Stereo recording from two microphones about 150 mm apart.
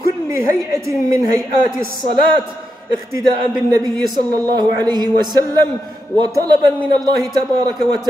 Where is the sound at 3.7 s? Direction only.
25° right (ahead or behind).